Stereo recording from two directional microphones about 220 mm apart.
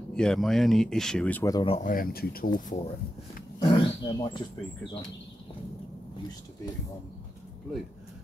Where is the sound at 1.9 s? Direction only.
40° left (ahead or behind).